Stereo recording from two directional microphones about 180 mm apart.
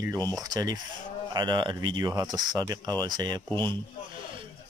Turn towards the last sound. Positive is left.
turn(degrees=-25)  # may be behind; listen again after turning